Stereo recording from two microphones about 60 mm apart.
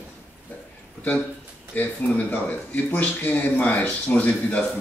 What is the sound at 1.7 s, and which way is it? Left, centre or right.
Speech, left.